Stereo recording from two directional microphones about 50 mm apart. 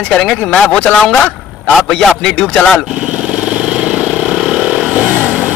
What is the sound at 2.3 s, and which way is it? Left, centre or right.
Speech, left.